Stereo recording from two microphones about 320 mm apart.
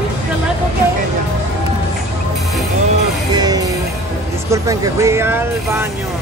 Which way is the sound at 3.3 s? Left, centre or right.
Centre.